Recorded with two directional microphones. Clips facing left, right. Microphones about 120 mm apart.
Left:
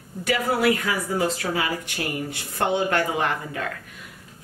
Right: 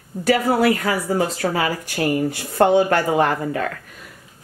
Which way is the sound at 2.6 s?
40° right (ahead or behind).